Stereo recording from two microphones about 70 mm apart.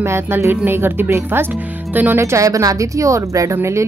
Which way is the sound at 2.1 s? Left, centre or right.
Right.